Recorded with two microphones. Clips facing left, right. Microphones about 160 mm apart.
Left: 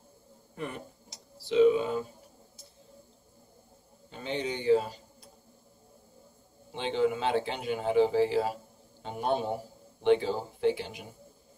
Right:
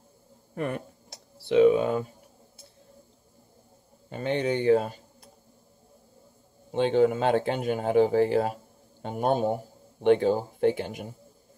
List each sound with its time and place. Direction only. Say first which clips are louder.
0.6 s speech: right 7 dB; 60° right (ahead or behind)
4.1 s speech: right 7 dB; 55° right (ahead or behind)
6.7 s speech: right 6 dB; 50° right (ahead or behind)